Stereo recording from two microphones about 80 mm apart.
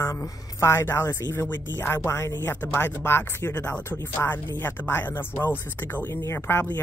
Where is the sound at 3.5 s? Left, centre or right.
Centre.